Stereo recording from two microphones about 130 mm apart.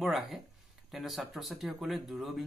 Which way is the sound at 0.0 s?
Centre (ahead or behind).